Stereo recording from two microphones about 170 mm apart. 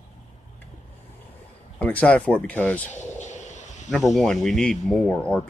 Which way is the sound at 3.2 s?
45° left (ahead or behind).